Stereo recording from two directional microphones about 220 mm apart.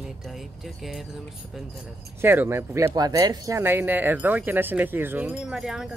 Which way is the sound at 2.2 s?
10° right (ahead or behind).